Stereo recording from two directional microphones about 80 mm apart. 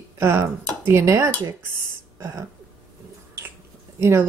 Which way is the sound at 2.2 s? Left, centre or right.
Right.